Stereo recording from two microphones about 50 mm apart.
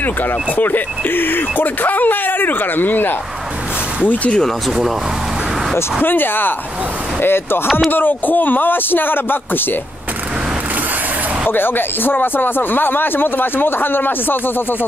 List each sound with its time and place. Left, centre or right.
0.0 s speech: left
4.1 s speech: left
6.0 s speech: left
11.5 s speech: left